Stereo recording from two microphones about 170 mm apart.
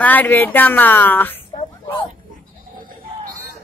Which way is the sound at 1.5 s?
30° left (ahead or behind).